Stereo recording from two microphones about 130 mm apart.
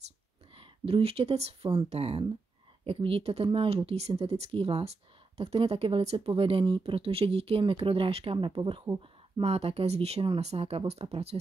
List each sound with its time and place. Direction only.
0.6 s speech: 45° right (ahead or behind)